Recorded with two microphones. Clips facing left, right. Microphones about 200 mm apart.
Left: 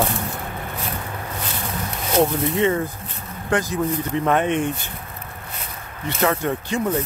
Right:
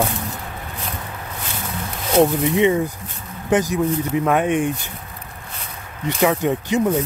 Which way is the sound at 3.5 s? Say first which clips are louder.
Right 3 dB; 15° right (ahead or behind).